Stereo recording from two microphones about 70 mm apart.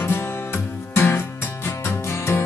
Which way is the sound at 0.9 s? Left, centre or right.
Left.